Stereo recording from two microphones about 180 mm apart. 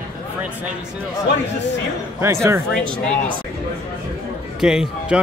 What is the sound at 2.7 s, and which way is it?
Speech, 5° left (ahead or behind).